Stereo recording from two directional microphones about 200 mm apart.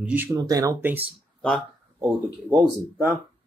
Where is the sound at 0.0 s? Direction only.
10° right (ahead or behind).